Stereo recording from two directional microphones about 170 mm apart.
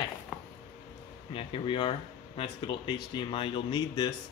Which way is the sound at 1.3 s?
35° left (ahead or behind).